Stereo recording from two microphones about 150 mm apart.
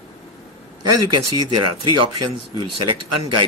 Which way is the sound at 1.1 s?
30° right (ahead or behind).